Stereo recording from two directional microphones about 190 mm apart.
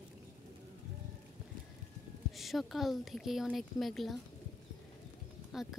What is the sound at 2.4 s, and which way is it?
Speech, centre (ahead or behind).